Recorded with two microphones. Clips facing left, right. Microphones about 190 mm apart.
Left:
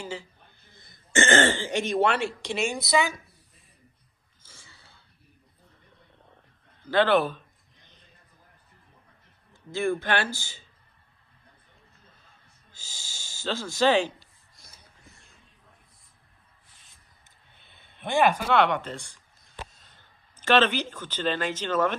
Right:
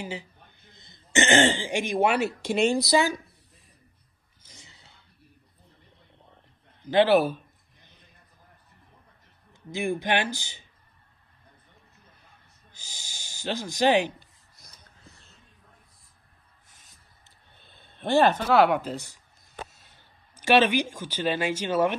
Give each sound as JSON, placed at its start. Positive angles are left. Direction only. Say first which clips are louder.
{"t": 0.0, "sound": "speech", "louder": "right 1 dB", "side_deg": -15}
{"t": 4.5, "sound": "throat clearing", "louder": "right 1 dB", "side_deg": -20}
{"t": 6.8, "sound": "a sound", "louder": "right 2 dB", "side_deg": -15}
{"t": 9.5, "sound": "a man's voice", "louder": "left 2 dB", "side_deg": -15}
{"t": 12.0, "sound": "a sound", "louder": "right 1 dB", "side_deg": -15}
{"t": 14.6, "sound": "snort", "louder": "even", "side_deg": 5}
{"t": 15.0, "sound": "a sound", "louder": "right 3 dB", "side_deg": 15}
{"t": 17.9, "sound": "speech", "louder": "right 2 dB", "side_deg": 10}
{"t": 18.5, "sound": "speech", "louder": "right 3 dB", "side_deg": -5}